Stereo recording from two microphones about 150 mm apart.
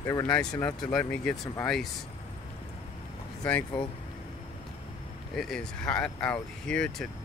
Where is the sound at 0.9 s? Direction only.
5° left (ahead or behind).